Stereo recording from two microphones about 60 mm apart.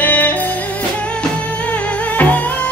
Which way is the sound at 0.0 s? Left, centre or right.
Left.